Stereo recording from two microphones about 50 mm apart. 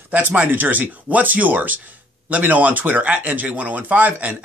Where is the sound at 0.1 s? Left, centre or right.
Right.